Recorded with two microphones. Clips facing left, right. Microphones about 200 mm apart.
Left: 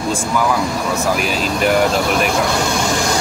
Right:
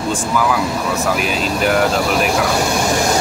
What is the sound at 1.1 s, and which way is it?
Speech, centre (ahead or behind).